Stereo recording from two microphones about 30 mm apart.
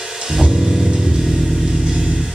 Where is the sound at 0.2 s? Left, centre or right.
Centre.